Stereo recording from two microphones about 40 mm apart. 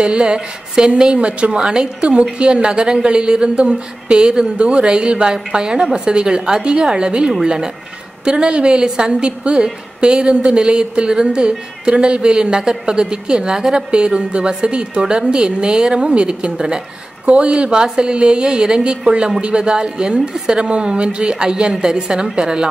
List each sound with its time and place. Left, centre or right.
0.0 s a woman's voice: right
16.5 s speech: centre
17.3 s a woman's voice: right